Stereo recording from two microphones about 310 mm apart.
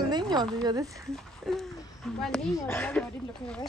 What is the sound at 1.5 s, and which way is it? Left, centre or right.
Speech, centre.